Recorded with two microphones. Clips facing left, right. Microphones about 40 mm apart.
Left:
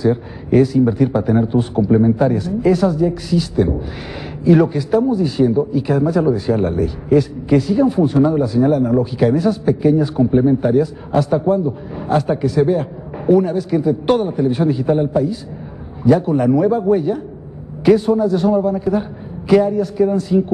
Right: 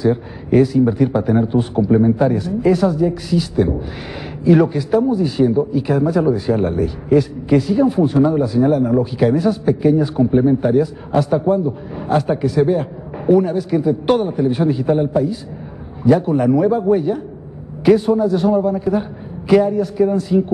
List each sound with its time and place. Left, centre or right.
0.0 s speech: centre